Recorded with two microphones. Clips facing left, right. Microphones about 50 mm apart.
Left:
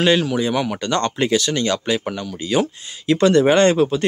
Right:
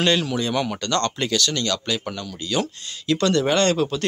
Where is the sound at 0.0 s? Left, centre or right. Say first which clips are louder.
Left 4 dB; centre.